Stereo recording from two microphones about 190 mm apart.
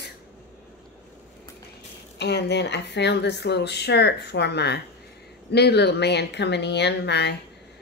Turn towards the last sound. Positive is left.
turn(degrees=65)  # may be behind; listen again after turning